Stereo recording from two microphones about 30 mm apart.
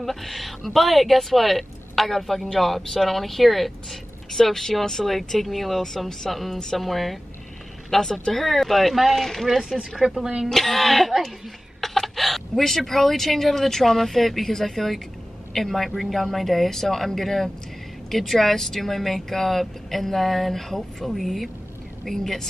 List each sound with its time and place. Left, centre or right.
0.0 s speech: centre
7.9 s speech: centre
9.1 s speech: centre
10.0 s speech: centre
10.5 s speech: centre